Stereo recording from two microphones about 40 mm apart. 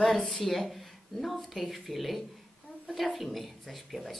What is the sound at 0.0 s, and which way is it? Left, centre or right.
Speech, centre.